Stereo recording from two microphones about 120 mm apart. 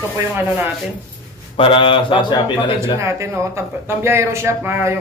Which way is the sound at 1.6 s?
45° left (ahead or behind).